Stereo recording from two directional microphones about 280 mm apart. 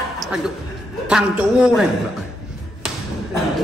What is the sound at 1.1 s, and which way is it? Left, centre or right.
Speech, centre.